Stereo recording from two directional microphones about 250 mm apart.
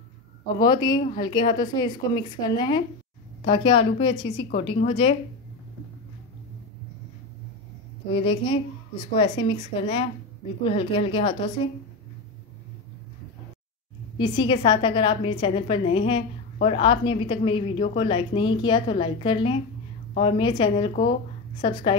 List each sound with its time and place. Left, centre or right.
0.6 s a woman's voice: centre
8.1 s a woman's voice: left
14.1 s a woman's voice: centre